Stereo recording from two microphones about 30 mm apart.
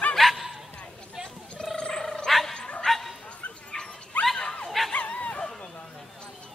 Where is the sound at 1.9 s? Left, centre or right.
Centre.